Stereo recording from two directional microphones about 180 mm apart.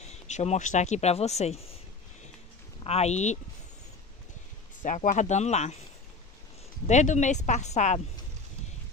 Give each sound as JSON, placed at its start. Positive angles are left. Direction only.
{"t": 0.0, "sound": "speech", "side_deg": 40}
{"t": 2.8, "sound": "speech", "side_deg": 35}
{"t": 4.8, "sound": "speech", "side_deg": 45}
{"t": 6.9, "sound": "speech", "side_deg": 40}